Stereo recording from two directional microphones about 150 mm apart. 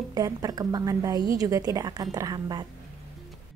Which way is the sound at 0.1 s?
25° right (ahead or behind).